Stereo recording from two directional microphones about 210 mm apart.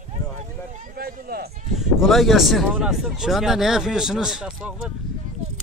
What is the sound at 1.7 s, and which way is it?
Speech, centre (ahead or behind).